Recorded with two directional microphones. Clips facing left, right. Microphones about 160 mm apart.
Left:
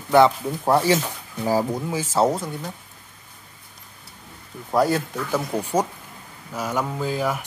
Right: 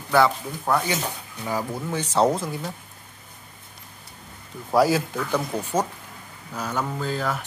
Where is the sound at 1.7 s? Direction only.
10° left (ahead or behind).